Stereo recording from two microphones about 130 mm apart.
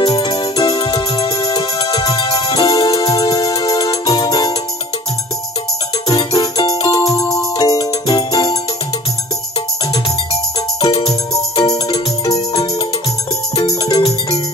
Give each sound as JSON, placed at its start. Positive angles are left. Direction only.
{"t": 0.0, "sound": "music", "side_deg": 30}
{"t": 6.0, "sound": "music", "side_deg": 30}
{"t": 7.1, "sound": "music", "side_deg": 25}
{"t": 11.5, "sound": "music", "side_deg": 55}
{"t": 13.6, "sound": "music", "side_deg": 30}